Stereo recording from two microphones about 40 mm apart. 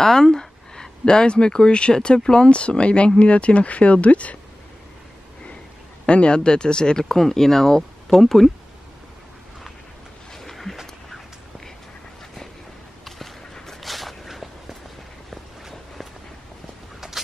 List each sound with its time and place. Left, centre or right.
0.0 s speech: centre; by 4.4 s left
6.0 s speech: left; by 8.5 s centre
10.3 s a sound: centre
13.8 s walk: centre
17.0 s vehicle: centre